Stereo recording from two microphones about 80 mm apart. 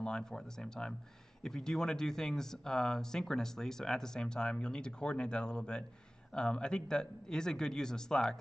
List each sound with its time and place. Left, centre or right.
0.0 s speech: centre